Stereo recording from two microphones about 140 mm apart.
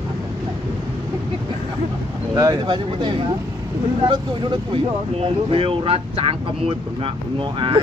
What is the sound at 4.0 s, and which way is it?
Speech, 35° right (ahead or behind).